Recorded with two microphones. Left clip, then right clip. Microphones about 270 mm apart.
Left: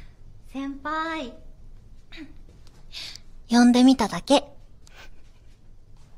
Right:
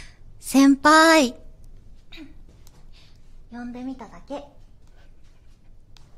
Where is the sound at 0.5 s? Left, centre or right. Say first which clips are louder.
Right 15 dB; right.